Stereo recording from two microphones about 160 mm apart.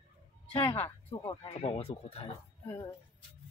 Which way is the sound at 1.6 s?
35° left (ahead or behind).